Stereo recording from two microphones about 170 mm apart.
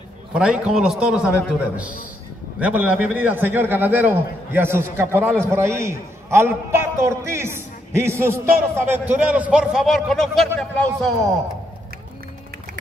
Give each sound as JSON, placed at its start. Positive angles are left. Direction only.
{"t": 0.3, "sound": "a man's voice", "side_deg": -5}
{"t": 2.6, "sound": "a man's voice", "side_deg": -5}